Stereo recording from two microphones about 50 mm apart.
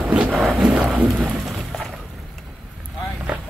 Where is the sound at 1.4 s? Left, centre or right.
Centre.